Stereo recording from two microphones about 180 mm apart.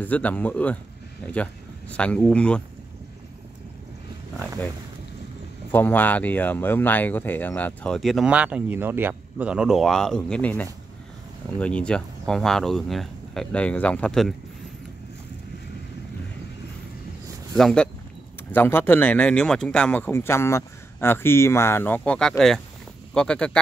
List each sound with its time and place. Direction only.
0.0 s speech: 10° left (ahead or behind)
5.7 s speech: 10° left (ahead or behind)
17.6 s speech: centre (ahead or behind)